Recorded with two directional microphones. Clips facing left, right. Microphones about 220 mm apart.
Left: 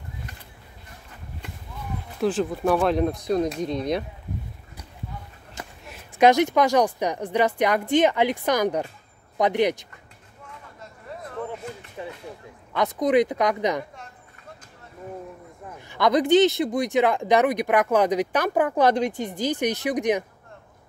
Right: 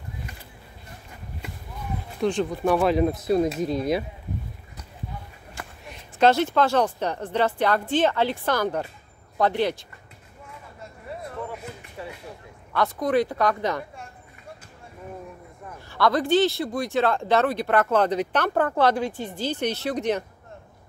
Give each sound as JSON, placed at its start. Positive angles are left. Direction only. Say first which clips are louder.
{"t": 2.1, "sound": "speech", "louder": "left 1 dB", "side_deg": 0}
{"t": 5.9, "sound": "speech", "louder": "left 2 dB", "side_deg": 10}
{"t": 12.0, "sound": "a sound", "louder": "left 2 dB", "side_deg": 20}
{"t": 12.7, "sound": "speech", "louder": "left 2 dB", "side_deg": 20}
{"t": 15.9, "sound": "speech", "louder": "left 3 dB", "side_deg": 20}